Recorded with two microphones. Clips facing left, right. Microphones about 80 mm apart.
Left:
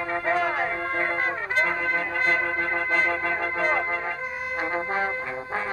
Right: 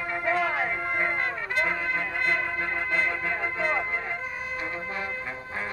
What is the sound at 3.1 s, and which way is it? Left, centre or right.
Music, left.